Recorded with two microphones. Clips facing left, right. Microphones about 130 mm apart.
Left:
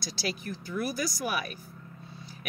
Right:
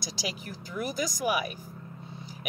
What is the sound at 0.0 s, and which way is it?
Speech, 15° right (ahead or behind).